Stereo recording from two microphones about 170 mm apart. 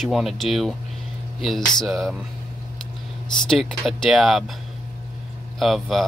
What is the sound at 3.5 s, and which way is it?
Speech, centre (ahead or behind).